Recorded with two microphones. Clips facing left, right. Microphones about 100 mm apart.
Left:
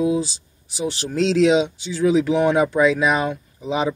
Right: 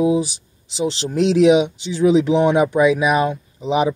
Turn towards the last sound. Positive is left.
turn(degrees=-15)  # may be behind; listen again after turning